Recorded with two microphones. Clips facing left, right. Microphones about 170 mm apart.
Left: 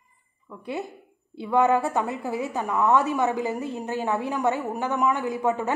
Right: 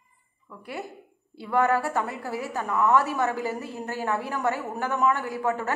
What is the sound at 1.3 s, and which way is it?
A woman's voice, 20° left (ahead or behind).